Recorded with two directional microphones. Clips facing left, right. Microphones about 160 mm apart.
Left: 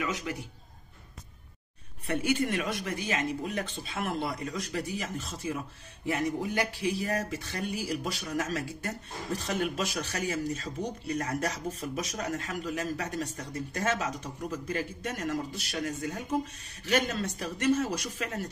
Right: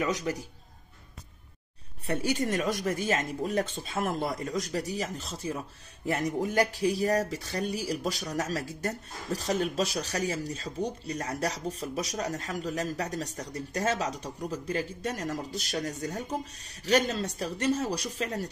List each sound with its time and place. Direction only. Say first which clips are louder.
0.0 s speech: right 4 dB; 35° right (ahead or behind)
2.0 s speech: even; 35° right (ahead or behind)